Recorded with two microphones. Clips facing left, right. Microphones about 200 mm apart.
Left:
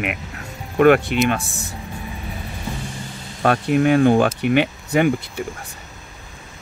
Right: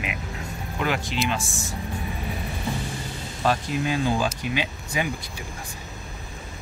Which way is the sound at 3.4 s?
60° left (ahead or behind).